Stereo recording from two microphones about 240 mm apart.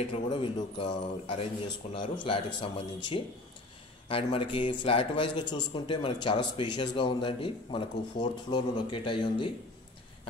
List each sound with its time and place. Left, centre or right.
0.1 s speech: left